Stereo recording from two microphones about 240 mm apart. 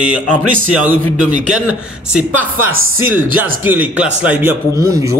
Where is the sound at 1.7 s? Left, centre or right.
Centre.